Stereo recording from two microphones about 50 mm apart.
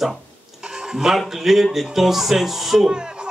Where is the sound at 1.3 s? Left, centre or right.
Centre.